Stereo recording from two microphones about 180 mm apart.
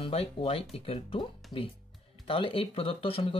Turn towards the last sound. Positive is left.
turn(degrees=30)  # may be behind; listen again after turning